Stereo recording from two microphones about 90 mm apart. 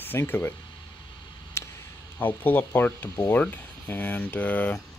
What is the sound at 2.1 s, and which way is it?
Speech, 20° left (ahead or behind).